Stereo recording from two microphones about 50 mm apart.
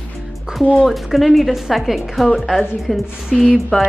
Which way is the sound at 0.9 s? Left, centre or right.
Centre.